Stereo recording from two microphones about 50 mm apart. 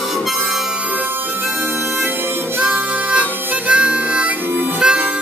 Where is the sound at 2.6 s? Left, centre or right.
Right.